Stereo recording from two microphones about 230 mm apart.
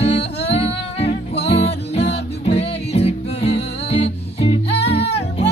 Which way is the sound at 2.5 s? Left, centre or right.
Left.